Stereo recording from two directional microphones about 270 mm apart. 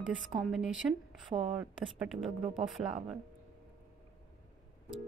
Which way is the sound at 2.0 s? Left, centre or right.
Centre.